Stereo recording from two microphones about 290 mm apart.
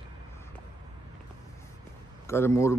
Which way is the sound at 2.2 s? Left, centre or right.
Centre.